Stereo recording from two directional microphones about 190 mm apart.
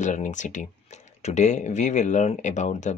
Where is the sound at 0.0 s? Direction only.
40° left (ahead or behind).